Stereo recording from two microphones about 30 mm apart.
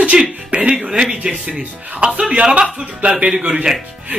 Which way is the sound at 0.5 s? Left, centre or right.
Right.